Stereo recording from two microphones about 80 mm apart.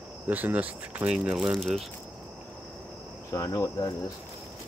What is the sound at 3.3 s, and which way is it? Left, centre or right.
Cricket, left.